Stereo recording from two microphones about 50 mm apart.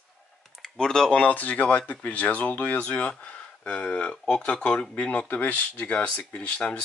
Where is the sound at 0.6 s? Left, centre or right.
Centre.